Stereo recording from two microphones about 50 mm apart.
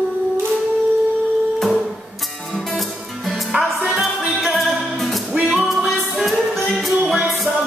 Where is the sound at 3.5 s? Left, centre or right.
Centre.